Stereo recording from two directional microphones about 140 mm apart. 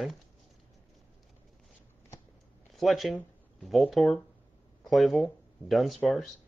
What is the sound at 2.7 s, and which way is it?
Speech, centre (ahead or behind).